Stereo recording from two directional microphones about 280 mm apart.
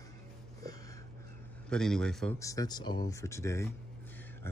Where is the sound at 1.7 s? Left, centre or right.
Centre.